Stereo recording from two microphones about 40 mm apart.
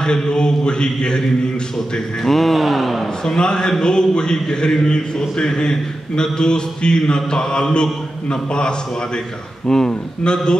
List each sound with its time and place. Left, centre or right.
0.0 s speech: centre
2.2 s speech: centre
3.3 s speech: left